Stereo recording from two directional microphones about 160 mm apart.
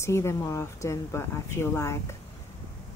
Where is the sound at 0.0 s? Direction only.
15° left (ahead or behind).